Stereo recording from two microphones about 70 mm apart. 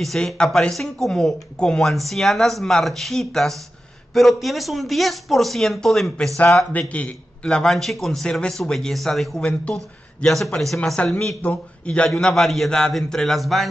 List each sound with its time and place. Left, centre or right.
0.0 s a man's voice: centre
7.4 s speech: centre
9.4 s a man's voice: centre
10.2 s speech: centre
11.4 s a man's voice: centre
12.1 s speech: centre